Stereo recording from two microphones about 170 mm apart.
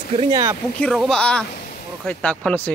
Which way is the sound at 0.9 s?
5° left (ahead or behind).